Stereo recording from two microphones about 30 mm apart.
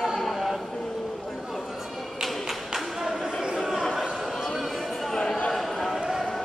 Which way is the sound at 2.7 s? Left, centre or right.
Centre.